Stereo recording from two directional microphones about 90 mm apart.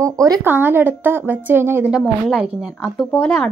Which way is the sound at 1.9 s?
5° right (ahead or behind).